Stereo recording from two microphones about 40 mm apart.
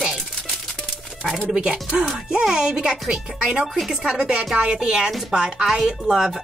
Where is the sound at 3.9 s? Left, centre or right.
Centre.